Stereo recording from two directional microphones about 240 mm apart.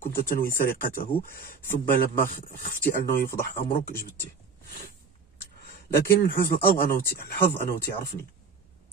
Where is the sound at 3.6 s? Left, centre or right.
Left.